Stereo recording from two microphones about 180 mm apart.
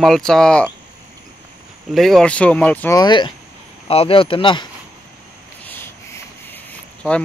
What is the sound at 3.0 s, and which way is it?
Speech, 25° left (ahead or behind).